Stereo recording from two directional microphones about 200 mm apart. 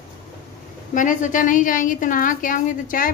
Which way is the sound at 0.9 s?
40° left (ahead or behind).